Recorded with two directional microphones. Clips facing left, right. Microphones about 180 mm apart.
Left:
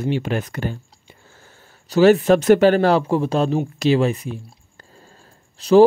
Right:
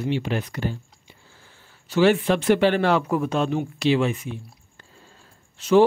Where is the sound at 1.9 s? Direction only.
40° left (ahead or behind).